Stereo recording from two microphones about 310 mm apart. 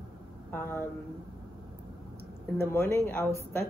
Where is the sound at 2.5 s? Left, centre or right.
Centre.